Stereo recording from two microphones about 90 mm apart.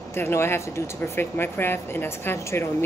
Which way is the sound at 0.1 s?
30° left (ahead or behind).